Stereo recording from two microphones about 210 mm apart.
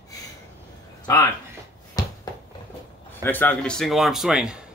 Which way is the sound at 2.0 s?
15° left (ahead or behind).